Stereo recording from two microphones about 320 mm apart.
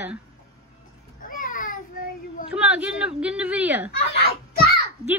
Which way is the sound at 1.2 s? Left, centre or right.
Left.